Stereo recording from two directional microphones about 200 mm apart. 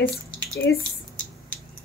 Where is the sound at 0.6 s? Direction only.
60° left (ahead or behind).